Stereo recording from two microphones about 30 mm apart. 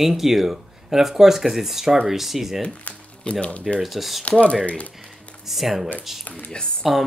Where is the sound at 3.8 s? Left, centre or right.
Centre.